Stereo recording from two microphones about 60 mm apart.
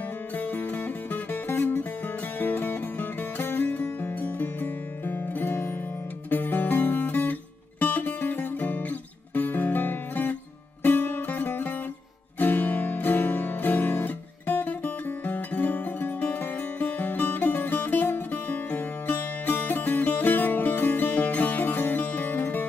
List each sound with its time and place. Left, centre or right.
0.4 s music: left